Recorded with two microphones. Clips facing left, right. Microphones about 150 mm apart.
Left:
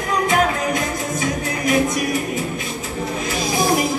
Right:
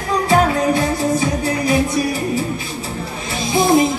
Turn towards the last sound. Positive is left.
turn(degrees=-25)  # may be behind; listen again after turning